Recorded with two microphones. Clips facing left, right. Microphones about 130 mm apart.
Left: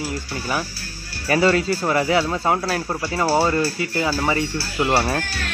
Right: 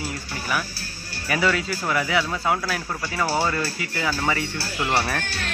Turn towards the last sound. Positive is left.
turn(degrees=25)  # may be behind; listen again after turning